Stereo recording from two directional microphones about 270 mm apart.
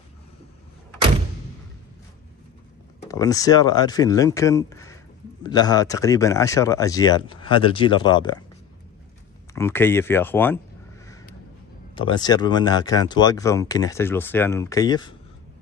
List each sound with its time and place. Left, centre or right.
3.1 s speech: centre
9.5 s speech: centre
11.9 s speech: centre